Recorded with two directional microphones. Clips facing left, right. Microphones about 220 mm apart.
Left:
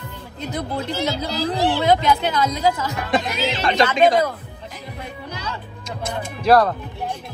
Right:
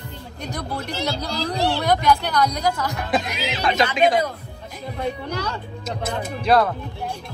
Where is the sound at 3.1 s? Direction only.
Centre (ahead or behind).